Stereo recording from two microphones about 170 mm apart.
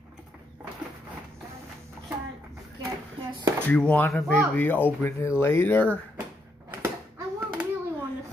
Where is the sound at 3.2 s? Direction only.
25° right (ahead or behind).